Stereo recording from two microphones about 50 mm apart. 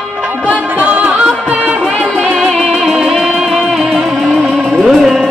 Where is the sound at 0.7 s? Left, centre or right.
Right.